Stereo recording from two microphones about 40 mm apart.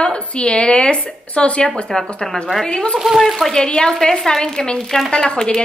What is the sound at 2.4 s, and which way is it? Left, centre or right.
Speech, centre.